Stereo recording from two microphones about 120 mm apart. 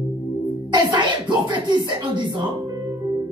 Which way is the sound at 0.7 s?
40° right (ahead or behind).